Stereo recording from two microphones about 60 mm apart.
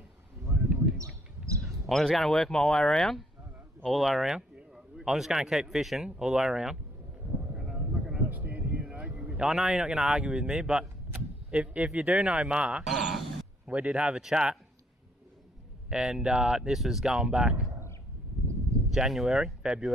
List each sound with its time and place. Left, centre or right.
0.9 s bird: right
1.9 s speech: centre
7.7 s a sound: right
9.4 s a man's voice: centre
12.8 s a sound: centre
13.7 s a man's voice: right
15.9 s speech: centre
18.9 s speech: centre